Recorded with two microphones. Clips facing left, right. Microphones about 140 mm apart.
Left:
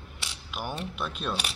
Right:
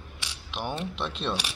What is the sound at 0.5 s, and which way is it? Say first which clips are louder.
Speech: right 2 dB; 5° left (ahead or behind).